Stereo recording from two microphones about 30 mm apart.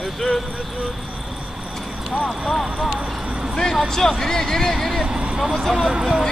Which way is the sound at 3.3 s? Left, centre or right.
Right.